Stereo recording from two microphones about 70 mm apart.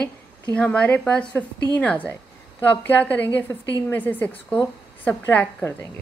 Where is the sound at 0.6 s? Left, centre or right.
Centre.